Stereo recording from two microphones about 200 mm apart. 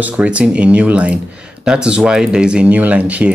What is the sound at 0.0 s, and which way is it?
Speech, 5° right (ahead or behind).